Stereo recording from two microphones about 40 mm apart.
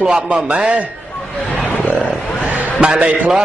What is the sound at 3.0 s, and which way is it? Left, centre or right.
Speech, right.